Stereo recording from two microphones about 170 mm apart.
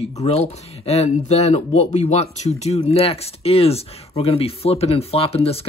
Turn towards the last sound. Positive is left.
turn(degrees=35)  # may be behind; listen again after turning